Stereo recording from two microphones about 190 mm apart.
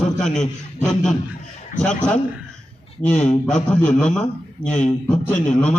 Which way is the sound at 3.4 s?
5° left (ahead or behind).